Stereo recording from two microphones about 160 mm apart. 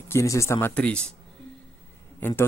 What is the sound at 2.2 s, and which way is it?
Speech, 15° left (ahead or behind).